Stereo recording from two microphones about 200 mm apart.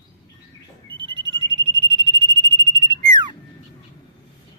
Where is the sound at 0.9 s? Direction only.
25° right (ahead or behind).